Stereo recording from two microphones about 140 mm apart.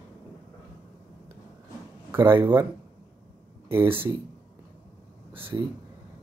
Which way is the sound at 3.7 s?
15° right (ahead or behind).